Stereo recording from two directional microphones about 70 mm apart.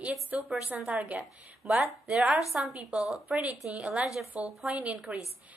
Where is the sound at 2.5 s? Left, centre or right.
Centre.